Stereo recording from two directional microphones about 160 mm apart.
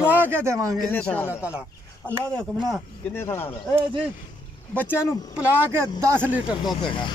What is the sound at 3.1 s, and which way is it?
Speech, 15° left (ahead or behind).